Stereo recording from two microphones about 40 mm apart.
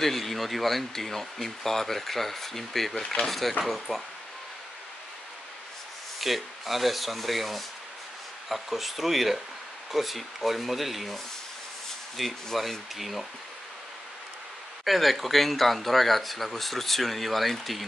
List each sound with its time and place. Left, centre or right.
0.0 s speech: centre
2.9 s speech: centre
3.3 s speech: centre
3.9 s speech: centre
6.1 s speech: centre
12.2 s speech: centre
14.9 s speech: centre